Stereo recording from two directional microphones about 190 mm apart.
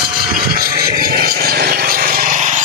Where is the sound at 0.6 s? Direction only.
55° right (ahead or behind).